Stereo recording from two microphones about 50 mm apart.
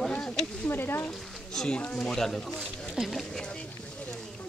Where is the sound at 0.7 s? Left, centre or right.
Left.